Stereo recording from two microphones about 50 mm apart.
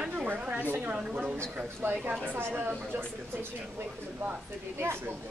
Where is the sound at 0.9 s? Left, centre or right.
Centre.